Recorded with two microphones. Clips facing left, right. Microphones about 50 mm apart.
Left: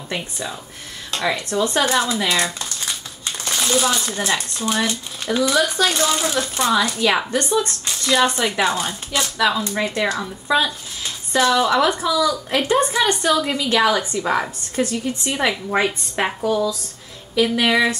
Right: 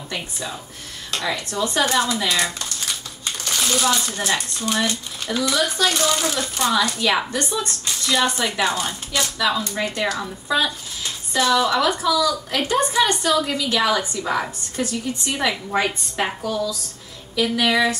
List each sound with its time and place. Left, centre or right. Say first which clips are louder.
1.1 s speech: left 3 dB; centre
1.8 s a woman's voice: right 1 dB; left
2.3 s crumpling: left 1 dB; left
3.5 s speech: left 1 dB; centre
4.0 s a woman's voice: left 1 dB; left
13.6 s a woman's voice: left 3 dB; left